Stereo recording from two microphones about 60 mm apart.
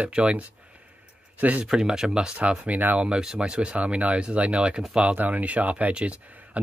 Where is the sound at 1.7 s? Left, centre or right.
Centre; by 3.1 s right.